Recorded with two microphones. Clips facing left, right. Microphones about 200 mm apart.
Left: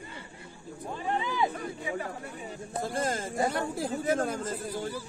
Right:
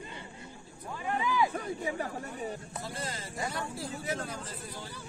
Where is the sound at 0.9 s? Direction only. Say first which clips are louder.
Even; 25° left (ahead or behind).